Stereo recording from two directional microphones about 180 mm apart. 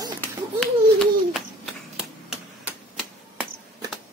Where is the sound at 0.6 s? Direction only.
Centre (ahead or behind).